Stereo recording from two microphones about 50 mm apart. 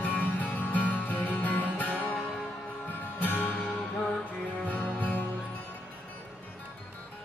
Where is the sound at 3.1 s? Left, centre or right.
Left.